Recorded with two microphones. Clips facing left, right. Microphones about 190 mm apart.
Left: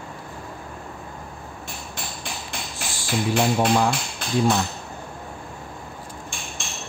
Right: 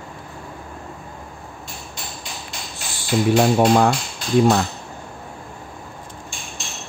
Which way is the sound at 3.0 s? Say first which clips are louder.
Right 6 dB; 55° right (ahead or behind).